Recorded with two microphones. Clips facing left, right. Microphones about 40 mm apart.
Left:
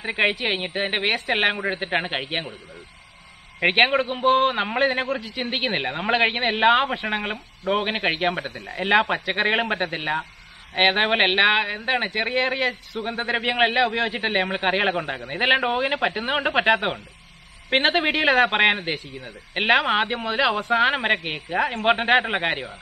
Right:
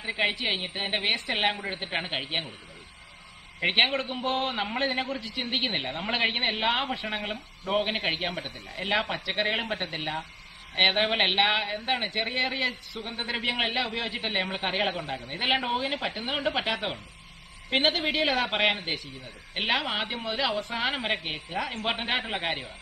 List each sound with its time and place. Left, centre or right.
0.0 s a man's voice: left
3.6 s a man's voice: left
8.5 s a man's voice: left
8.7 s a man's voice: left
12.6 s a man's voice: left
13.2 s a man's voice: left